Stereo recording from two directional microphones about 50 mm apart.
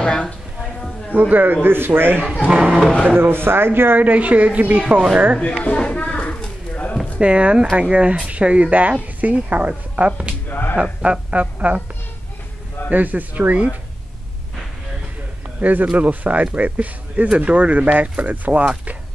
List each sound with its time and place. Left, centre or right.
0.0 s a woman's voice: centre
1.3 s speech: right
2.4 s speech: right
2.8 s speech: centre
3.2 s speech: right
4.1 s speech: right
5.4 s a sound: left
7.2 s speech: right
10.5 s speech: left
10.8 s speech: right
12.9 s a man's voice: right
15.6 s a man's voice: right